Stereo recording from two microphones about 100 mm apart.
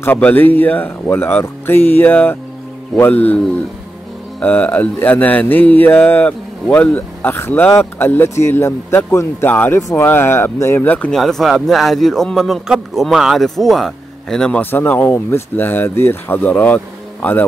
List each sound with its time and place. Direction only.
0.0 s speech: 20° left (ahead or behind)
4.4 s mantra: 15° left (ahead or behind)
7.8 s speech: 20° left (ahead or behind)
9.8 s speech: 30° left (ahead or behind)
10.0 s speech: 20° left (ahead or behind)
11.1 s a man's voice: centre (ahead or behind)
14.6 s speech: 20° left (ahead or behind)